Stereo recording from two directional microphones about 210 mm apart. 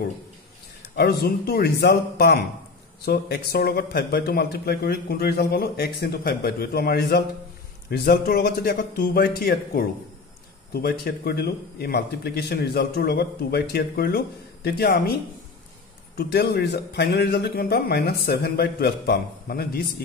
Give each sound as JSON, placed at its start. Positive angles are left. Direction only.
{"t": 0.9, "sound": "speech", "side_deg": 50}
{"t": 16.2, "sound": "speech", "side_deg": 50}